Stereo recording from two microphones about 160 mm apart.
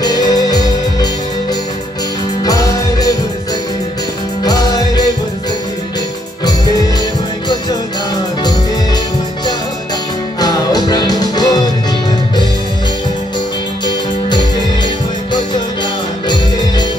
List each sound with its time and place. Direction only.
0.0 s music: 25° left (ahead or behind)
2.4 s music: 20° left (ahead or behind)
4.5 s music: 25° left (ahead or behind)
10.4 s music: 25° left (ahead or behind)